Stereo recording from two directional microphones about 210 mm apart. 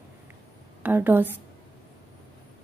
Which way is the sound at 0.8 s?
10° right (ahead or behind).